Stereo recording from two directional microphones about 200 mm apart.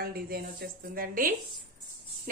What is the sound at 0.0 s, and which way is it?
A woman's voice, 50° right (ahead or behind).